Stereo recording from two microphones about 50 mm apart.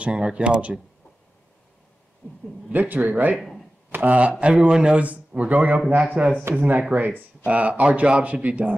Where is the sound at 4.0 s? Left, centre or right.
Right.